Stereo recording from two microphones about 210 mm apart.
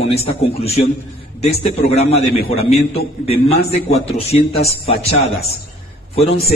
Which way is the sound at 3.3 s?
50° left (ahead or behind).